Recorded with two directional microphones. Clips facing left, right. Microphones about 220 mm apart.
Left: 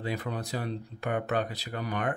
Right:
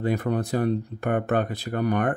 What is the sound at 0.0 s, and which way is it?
Speech, 50° right (ahead or behind).